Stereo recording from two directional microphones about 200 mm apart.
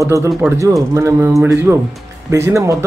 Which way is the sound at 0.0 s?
15° right (ahead or behind).